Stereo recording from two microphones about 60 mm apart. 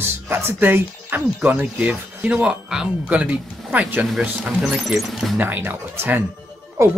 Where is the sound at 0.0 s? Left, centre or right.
Right.